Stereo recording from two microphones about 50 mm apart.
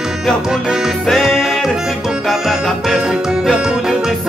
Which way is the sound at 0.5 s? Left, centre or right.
Centre.